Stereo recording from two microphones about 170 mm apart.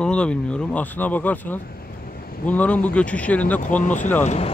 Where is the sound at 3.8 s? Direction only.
45° left (ahead or behind).